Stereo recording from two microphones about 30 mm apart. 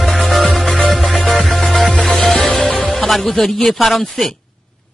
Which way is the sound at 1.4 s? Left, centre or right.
Centre.